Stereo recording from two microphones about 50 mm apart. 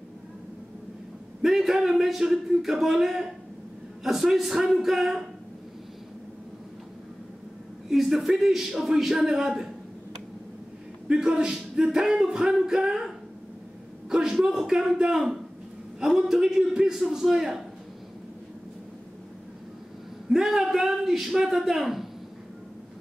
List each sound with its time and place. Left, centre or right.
1.4 s music: centre
7.9 s speech: centre
8.7 s music: centre
11.1 s music: centre
16.2 s music: centre
20.2 s a man's voice: centre